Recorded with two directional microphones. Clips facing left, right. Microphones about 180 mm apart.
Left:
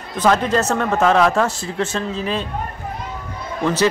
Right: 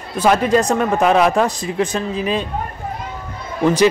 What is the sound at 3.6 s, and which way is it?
Speech, 10° right (ahead or behind).